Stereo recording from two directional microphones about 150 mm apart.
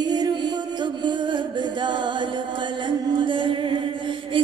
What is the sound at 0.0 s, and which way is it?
Music, 30° right (ahead or behind).